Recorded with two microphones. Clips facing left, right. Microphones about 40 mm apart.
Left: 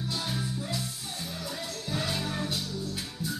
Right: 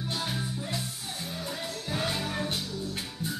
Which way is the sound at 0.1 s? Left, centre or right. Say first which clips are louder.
Right 2 dB; right.